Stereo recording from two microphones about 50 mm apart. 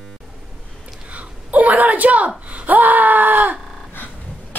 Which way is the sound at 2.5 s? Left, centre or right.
Right.